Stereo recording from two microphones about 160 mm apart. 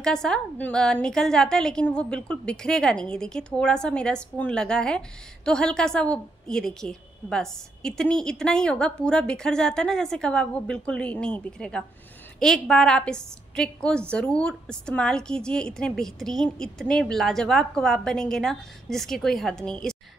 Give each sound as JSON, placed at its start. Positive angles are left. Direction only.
{"t": 0.0, "sound": "a woman's voice", "side_deg": 5}